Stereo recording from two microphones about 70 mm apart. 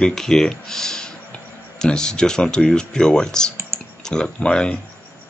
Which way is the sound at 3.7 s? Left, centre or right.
Right.